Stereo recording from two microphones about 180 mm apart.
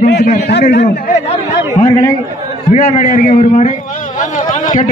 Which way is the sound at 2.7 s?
50° left (ahead or behind).